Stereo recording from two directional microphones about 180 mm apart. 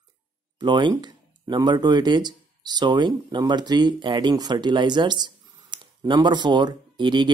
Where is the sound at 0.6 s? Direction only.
25° right (ahead or behind).